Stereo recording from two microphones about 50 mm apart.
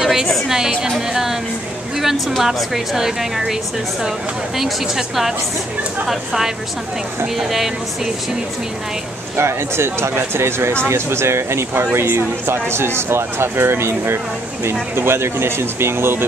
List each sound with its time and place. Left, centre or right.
0.0 s music: centre
0.8 s a woman's voice: centre
4.6 s a woman's voice: centre
9.4 s speech: right
11.9 s speech: right